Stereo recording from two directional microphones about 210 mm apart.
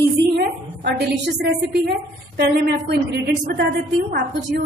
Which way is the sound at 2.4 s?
50° right (ahead or behind).